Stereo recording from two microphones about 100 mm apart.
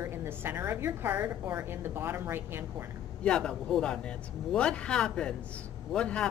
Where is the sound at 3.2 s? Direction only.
10° left (ahead or behind).